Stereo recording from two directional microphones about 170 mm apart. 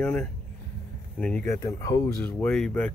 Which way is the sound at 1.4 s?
20° left (ahead or behind).